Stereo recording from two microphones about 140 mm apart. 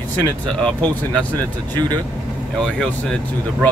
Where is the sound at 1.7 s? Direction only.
30° right (ahead or behind).